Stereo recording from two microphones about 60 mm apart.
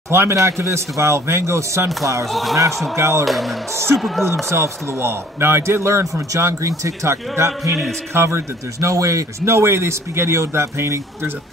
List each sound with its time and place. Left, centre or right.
0.1 s a man's voice: right
3.0 s a man's voice: right
3.3 s speech: centre
4.2 s a man's voice: right
6.3 s speech: right
9.4 s a man's voice: right